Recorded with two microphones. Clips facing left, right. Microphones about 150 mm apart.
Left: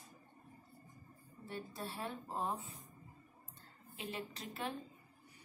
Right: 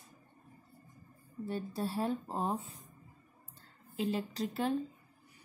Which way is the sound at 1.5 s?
35° right (ahead or behind).